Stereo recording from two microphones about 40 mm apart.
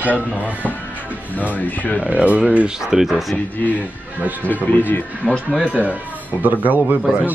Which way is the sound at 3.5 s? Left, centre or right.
Left.